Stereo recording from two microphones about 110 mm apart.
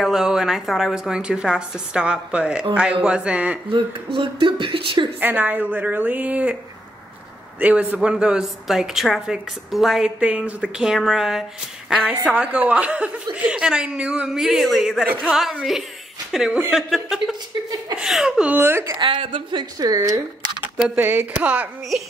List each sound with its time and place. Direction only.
0.0 s a woman's voice: 5° right (ahead or behind)
4.2 s a woman's voice: 50° right (ahead or behind)
5.2 s speech: 15° right (ahead or behind)
7.9 s a woman's voice: 10° right (ahead or behind)
18.6 s speech: 20° right (ahead or behind)
18.9 s a woman's voice: 50° right (ahead or behind); by 20.5 s 35° right (ahead or behind)
20.7 s speech: 15° right (ahead or behind)